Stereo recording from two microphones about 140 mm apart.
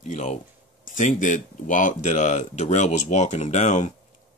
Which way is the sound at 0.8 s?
65° left (ahead or behind).